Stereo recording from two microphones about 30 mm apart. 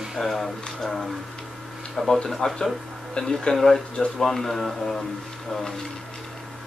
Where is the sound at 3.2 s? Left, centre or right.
Left.